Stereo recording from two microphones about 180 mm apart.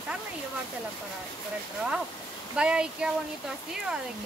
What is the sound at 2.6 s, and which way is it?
Speech, 5° right (ahead or behind).